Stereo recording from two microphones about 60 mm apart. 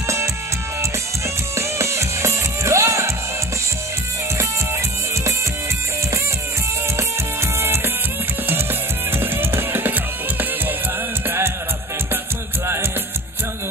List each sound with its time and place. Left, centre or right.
1.6 s music: right
7.6 s music: right
9.2 s music: right
11.2 s music: right